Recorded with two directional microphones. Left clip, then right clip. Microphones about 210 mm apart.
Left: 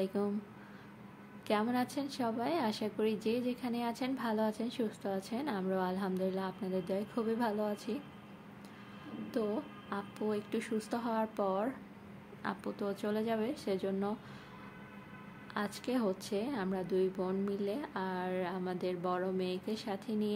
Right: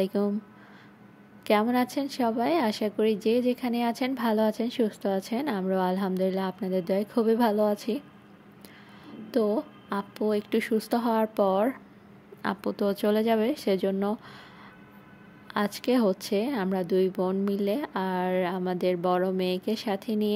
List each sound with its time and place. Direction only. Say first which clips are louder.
0.0 s a woman's voice: right 8 dB; 35° right (ahead or behind)
1.5 s a woman's voice: right 9 dB; 40° right (ahead or behind)
9.3 s a woman's voice: right 11 dB; 35° right (ahead or behind)
15.5 s a woman's voice: right 11 dB; 40° right (ahead or behind)